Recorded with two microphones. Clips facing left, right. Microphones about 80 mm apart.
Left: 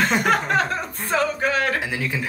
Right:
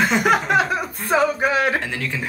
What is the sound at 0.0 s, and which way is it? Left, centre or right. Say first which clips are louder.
Speech: right 2 dB; centre.